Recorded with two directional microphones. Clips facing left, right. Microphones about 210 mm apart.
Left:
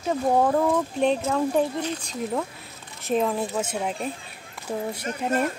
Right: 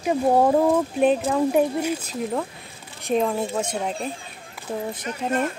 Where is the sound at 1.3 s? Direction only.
10° right (ahead or behind); by 4.0 s 5° left (ahead or behind).